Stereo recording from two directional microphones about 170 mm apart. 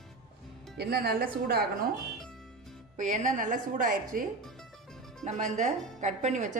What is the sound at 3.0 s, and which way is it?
A woman's voice, 45° right (ahead or behind).